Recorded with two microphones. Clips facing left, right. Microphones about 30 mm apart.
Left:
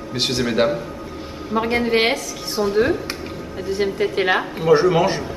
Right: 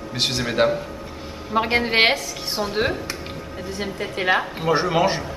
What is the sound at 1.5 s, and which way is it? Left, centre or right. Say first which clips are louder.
A woman's voice: left 1 dB; right.